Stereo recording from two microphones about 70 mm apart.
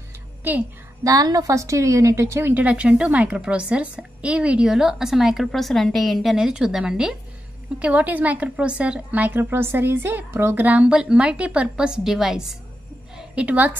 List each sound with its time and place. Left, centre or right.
0.4 s a woman's voice: right
1.0 s a woman's voice: right
2.5 s a woman's voice: centre
6.3 s a woman's voice: centre
7.8 s a woman's voice: right
10.6 s a woman's voice: right
13.3 s a woman's voice: centre